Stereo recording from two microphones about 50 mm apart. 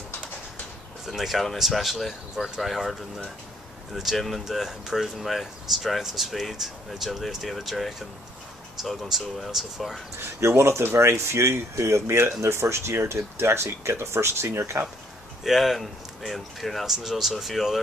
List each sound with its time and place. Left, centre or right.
1.0 s speech: centre
10.4 s speech: right
10.8 s speech: right
15.4 s speech: centre